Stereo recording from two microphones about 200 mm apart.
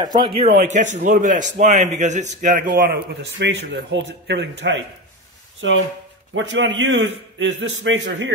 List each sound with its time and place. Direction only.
0.0 s speech: 20° right (ahead or behind)
0.7 s speech: 40° right (ahead or behind)
2.7 s a man's voice: 50° right (ahead or behind); by 8.3 s 70° right (ahead or behind)